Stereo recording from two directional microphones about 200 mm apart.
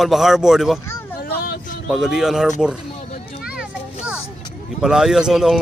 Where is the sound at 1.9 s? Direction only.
Centre (ahead or behind).